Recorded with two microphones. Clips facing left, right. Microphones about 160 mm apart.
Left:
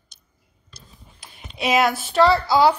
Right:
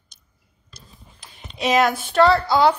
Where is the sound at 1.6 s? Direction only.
5° left (ahead or behind).